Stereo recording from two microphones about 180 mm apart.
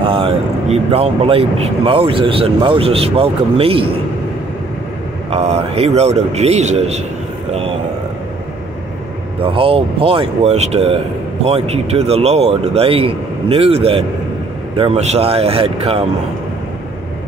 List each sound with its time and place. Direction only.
0.0 s speech: 30° right (ahead or behind)
5.3 s speech: 35° right (ahead or behind)
9.4 s speech: 30° right (ahead or behind)